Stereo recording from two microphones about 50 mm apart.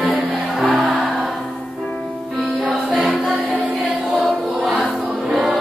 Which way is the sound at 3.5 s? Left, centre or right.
Right.